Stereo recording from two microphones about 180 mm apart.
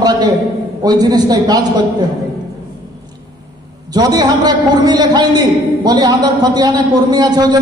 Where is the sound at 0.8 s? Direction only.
20° right (ahead or behind).